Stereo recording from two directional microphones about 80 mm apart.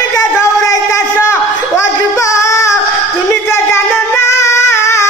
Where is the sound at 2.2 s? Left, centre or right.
Left.